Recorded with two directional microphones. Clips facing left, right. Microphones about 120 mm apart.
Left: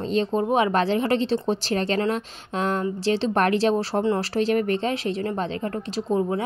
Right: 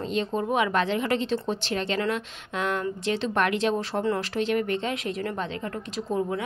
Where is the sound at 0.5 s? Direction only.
35° left (ahead or behind).